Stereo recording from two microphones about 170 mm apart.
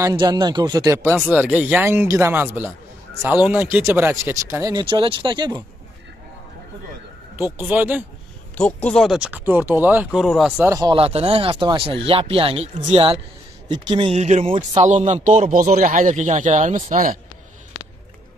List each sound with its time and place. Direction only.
0.0 s speech: 25° right (ahead or behind)
7.3 s speech: 15° right (ahead or behind)
8.5 s speech: 5° left (ahead or behind); by 10.2 s 10° right (ahead or behind)
10.2 s speech: centre (ahead or behind)
10.6 s speech: 20° right (ahead or behind); by 17.2 s 55° right (ahead or behind)